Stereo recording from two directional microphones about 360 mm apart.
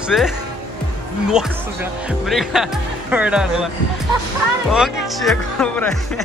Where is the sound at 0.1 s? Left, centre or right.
Centre.